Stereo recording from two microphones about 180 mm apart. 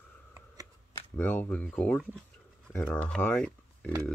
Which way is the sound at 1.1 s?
10° left (ahead or behind).